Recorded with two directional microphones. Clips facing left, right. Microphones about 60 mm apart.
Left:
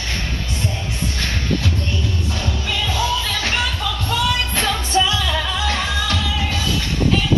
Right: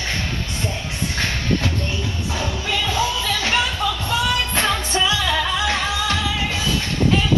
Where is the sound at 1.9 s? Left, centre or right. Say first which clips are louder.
Left 1 dB; centre.